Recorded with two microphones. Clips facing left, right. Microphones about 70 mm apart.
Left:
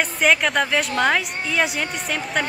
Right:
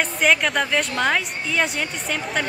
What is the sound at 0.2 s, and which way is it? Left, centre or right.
A woman's voice, centre.